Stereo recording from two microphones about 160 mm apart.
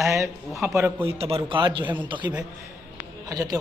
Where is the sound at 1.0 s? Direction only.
35° right (ahead or behind).